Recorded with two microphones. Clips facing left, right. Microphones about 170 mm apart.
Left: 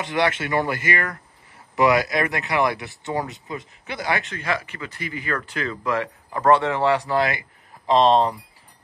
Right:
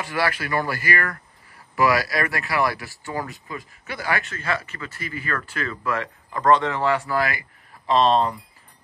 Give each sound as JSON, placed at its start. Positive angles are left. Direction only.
{"t": 0.0, "sound": "speech", "side_deg": 20}